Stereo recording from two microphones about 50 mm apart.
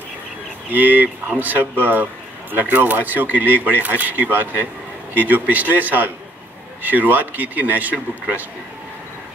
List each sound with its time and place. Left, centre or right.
0.7 s speech: right